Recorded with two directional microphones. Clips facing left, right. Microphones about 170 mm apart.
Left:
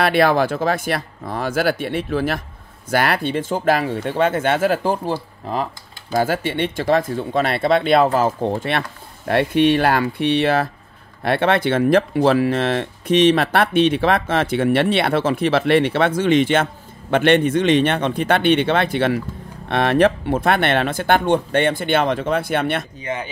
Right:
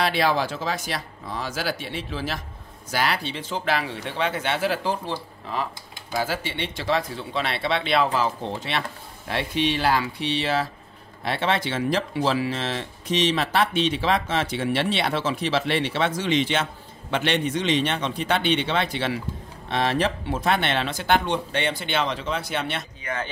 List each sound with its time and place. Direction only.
0.0 s speech: 55° left (ahead or behind)
6.1 s speech: 55° left (ahead or behind)
23.1 s speech: 25° left (ahead or behind)